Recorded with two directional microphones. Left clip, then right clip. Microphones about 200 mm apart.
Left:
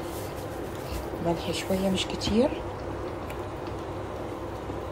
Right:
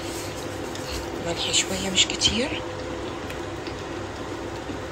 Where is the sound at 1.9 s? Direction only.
15° left (ahead or behind).